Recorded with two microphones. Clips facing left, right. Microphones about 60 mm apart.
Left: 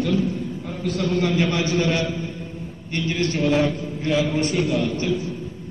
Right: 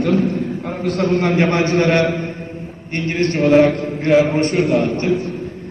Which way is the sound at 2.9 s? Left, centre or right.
Right.